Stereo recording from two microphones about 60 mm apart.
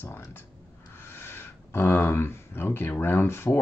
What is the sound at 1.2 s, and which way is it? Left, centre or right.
Speech, left.